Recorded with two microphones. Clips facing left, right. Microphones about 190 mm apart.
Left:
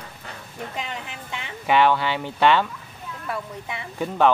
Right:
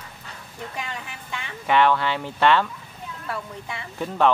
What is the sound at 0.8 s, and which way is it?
Speech, 20° left (ahead or behind).